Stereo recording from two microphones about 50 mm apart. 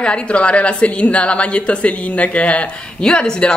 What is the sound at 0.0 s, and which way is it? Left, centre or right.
A woman's voice, left.